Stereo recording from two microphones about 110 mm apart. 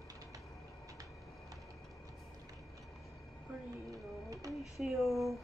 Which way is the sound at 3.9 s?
30° right (ahead or behind).